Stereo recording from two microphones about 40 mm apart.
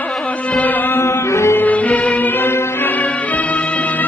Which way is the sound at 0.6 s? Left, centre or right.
Left.